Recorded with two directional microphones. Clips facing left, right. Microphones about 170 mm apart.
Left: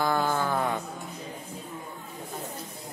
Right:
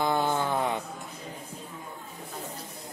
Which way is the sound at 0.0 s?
20° right (ahead or behind).